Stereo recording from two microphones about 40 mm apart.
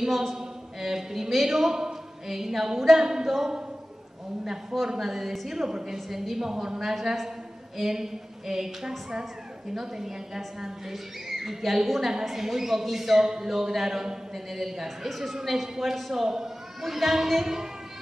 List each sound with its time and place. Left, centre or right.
0.0 s a woman's voice: centre
4.9 s a woman's voice: centre